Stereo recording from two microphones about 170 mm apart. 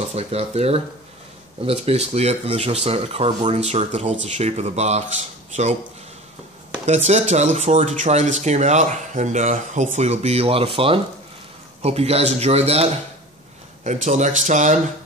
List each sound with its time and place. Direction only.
0.0 s speech: 40° right (ahead or behind)
6.9 s speech: 40° right (ahead or behind)